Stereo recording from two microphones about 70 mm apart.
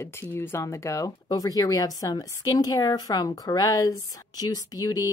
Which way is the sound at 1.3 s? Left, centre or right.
Left.